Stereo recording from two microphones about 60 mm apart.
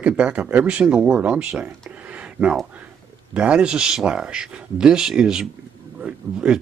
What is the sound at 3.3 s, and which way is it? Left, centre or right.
Speech, centre.